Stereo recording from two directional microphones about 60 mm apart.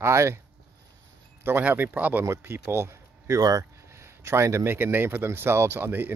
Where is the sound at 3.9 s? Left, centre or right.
Right.